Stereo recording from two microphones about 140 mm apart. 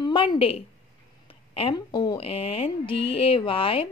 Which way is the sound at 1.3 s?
40° left (ahead or behind).